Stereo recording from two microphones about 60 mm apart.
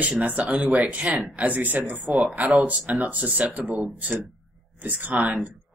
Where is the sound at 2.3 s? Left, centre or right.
Right.